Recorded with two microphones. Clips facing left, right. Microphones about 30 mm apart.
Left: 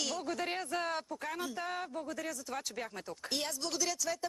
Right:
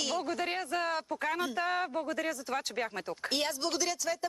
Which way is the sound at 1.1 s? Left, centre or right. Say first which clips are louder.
Right 6 dB; right.